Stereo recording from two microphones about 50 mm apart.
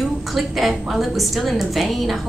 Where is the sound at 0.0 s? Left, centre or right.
Centre.